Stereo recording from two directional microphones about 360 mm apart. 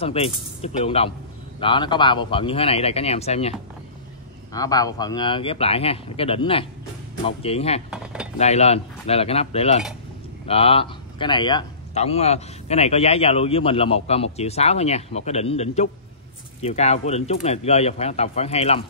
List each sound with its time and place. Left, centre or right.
0.0 s speech: centre
7.9 s cutlery: centre
8.4 s speech: centre